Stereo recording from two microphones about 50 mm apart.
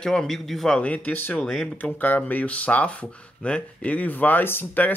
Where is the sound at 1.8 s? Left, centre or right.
Left.